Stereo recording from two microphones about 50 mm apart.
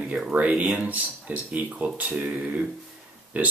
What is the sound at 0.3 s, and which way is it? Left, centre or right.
Speech, right.